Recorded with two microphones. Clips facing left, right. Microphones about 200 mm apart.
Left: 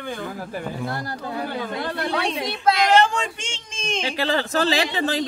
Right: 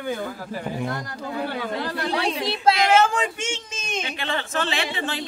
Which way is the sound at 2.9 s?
5° right (ahead or behind).